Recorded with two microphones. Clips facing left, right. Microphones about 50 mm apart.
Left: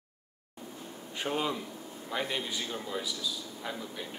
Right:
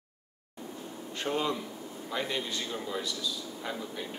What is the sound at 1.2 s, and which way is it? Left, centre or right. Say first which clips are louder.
A man's voice: right 1 dB; centre.